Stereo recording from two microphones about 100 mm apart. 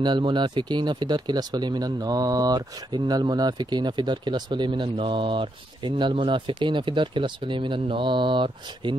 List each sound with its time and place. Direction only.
0.0 s speech: 50° right (ahead or behind)